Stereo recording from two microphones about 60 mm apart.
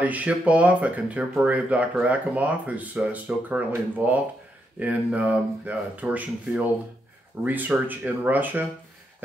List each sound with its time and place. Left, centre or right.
0.0 s speech: right